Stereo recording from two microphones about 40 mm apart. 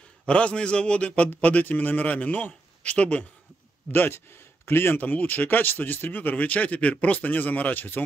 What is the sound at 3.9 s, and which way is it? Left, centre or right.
Speech, left.